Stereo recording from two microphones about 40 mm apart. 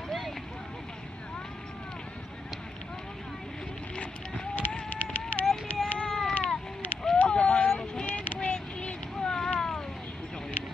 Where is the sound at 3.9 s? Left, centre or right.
Left.